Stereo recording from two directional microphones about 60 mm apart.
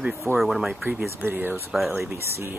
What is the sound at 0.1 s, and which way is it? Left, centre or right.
Speech, right.